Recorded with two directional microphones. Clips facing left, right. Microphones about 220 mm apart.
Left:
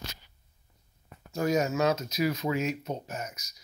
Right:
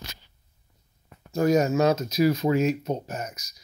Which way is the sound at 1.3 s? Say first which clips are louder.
Right 6 dB; 40° right (ahead or behind).